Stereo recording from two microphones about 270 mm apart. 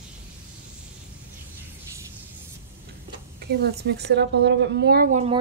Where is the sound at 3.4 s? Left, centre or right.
Right.